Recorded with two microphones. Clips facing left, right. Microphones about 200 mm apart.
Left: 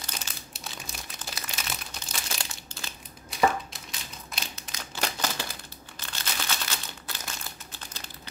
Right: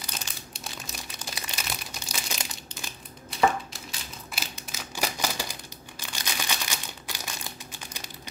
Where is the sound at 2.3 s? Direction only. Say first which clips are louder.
Right 1 dB; 15° right (ahead or behind).